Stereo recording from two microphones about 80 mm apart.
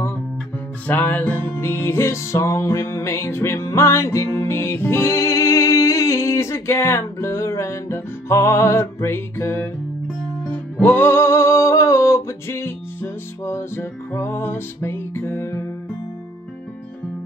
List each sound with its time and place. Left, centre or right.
0.8 s music: left
10.5 s music: left